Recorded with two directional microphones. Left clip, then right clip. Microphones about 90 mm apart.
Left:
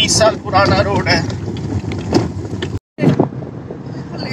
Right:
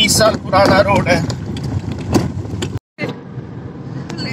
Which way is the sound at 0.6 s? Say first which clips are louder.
Right 3 dB; 35° right (ahead or behind).